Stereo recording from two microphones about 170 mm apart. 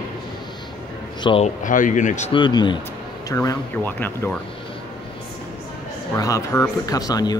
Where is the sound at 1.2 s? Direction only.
35° left (ahead or behind).